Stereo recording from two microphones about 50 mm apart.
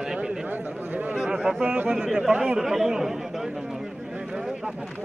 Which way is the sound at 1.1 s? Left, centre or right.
Centre.